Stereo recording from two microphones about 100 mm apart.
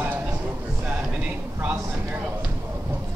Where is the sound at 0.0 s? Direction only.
15° right (ahead or behind).